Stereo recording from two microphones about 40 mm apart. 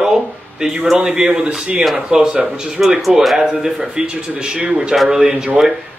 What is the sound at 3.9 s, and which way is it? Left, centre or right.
A man's voice, right.